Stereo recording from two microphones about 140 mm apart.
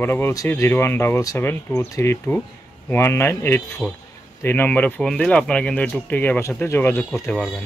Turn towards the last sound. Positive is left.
turn(degrees=10)  # may be behind; listen again after turning